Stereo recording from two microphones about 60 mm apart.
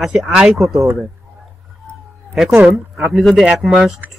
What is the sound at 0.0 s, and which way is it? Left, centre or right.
Speech, centre.